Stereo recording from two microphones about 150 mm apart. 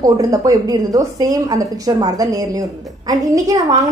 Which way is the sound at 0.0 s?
25° right (ahead or behind).